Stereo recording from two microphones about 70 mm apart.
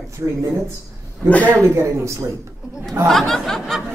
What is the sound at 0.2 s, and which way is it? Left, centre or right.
Speech, right.